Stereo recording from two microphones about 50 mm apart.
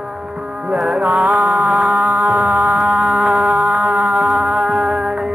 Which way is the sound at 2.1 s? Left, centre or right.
Right.